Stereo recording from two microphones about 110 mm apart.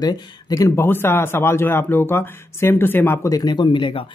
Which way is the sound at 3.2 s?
35° left (ahead or behind).